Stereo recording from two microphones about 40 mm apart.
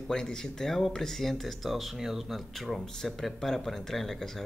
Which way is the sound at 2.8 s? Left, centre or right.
Centre.